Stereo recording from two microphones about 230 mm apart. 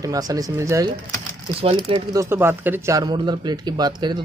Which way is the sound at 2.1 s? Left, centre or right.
Centre.